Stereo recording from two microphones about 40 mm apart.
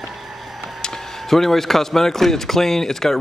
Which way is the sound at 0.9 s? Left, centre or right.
Centre.